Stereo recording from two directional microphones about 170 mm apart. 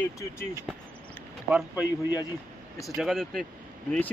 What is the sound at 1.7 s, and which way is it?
Speech, 20° left (ahead or behind).